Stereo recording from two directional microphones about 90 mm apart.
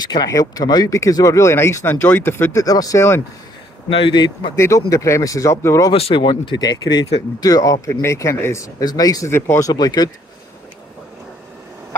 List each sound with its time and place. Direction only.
0.0 s speech: 50° left (ahead or behind); by 2.6 s 25° left (ahead or behind)
2.6 s speech: 40° left (ahead or behind)
3.9 s speech: 70° left (ahead or behind)
4.6 s speech: 35° left (ahead or behind)
5.9 s speech: 80° left; by 9.3 s 40° left (ahead or behind)
9.3 s speech: 30° left (ahead or behind)
9.7 s speech: 50° left (ahead or behind)